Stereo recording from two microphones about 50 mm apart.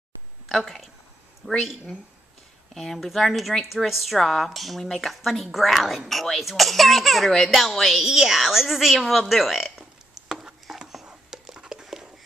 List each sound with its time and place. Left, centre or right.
0.5 s speech: centre
2.7 s a woman's voice: centre
8.0 s a sound: centre